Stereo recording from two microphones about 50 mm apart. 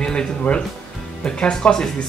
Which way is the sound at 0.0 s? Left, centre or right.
Centre.